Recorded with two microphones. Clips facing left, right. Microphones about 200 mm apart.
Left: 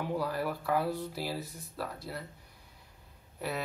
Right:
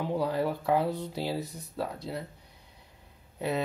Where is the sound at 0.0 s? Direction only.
20° right (ahead or behind).